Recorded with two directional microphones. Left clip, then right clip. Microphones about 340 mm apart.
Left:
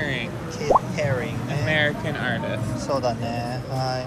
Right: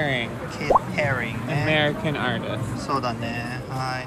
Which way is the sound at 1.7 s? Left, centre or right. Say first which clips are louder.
Even; centre.